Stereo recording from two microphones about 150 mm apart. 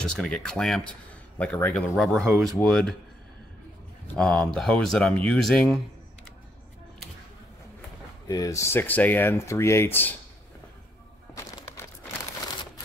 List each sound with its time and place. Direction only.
0.0 s speech: 5° left (ahead or behind)
4.1 s speech: 5° left (ahead or behind)
8.3 s speech: 20° left (ahead or behind)